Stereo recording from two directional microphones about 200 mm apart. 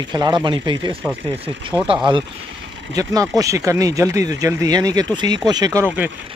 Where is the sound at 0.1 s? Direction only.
20° right (ahead or behind).